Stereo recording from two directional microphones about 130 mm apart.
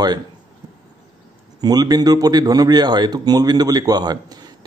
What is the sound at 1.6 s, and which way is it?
Speech, 30° right (ahead or behind).